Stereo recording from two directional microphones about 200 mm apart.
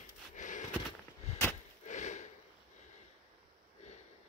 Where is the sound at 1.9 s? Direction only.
35° left (ahead or behind).